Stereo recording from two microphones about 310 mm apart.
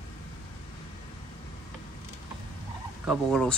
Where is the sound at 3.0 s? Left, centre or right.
Centre.